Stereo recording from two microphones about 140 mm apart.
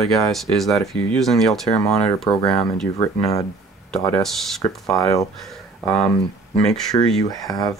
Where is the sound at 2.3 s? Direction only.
30° left (ahead or behind).